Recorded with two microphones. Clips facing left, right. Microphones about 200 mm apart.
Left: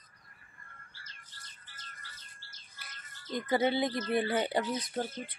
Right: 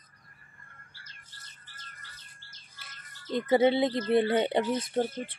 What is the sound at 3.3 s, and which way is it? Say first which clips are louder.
Speech: right 6 dB; 25° right (ahead or behind).